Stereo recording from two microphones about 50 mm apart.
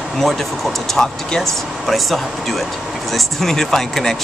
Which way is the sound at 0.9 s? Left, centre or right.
Centre.